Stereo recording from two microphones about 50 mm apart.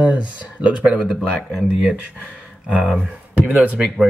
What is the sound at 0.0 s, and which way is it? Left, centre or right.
Speech, right.